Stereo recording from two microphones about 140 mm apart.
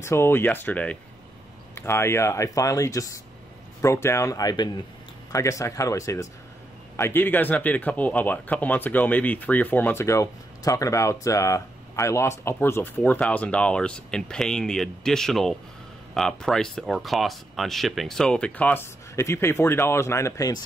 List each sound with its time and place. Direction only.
0.0 s speech: 20° left (ahead or behind)